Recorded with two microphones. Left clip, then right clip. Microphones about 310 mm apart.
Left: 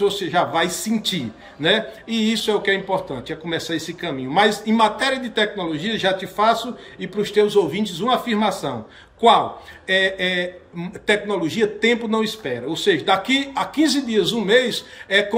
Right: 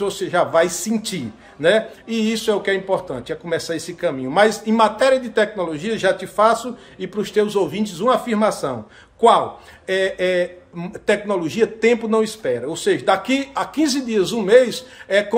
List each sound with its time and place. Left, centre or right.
0.0 s a man's voice: centre
9.8 s speech: centre